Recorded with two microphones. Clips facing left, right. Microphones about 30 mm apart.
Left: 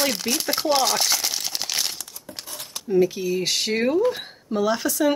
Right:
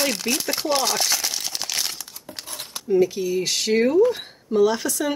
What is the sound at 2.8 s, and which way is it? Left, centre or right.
Speech, centre.